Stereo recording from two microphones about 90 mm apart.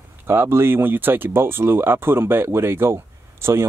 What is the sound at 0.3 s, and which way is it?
Speech, 25° right (ahead or behind).